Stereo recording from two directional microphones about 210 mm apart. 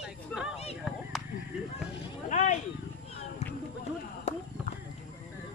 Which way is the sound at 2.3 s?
35° left (ahead or behind).